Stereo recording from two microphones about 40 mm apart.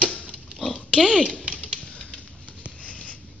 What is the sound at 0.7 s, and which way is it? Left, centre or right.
Oink, left.